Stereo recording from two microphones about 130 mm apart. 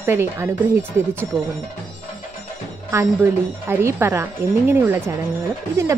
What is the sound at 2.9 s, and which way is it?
A woman's voice, 15° right (ahead or behind).